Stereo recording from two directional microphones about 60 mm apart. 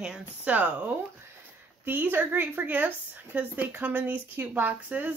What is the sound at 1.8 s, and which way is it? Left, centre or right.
A woman's voice, right.